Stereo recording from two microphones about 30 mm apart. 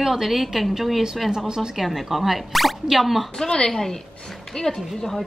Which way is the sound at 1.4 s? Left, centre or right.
Right.